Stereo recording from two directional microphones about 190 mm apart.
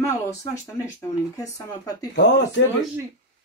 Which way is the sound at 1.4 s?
20° left (ahead or behind).